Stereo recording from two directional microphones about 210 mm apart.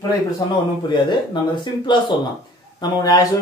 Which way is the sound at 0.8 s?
20° left (ahead or behind).